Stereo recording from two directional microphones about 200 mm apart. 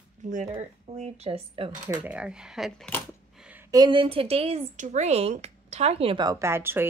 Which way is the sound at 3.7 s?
20° right (ahead or behind).